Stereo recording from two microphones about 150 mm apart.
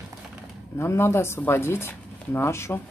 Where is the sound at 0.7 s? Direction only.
15° left (ahead or behind).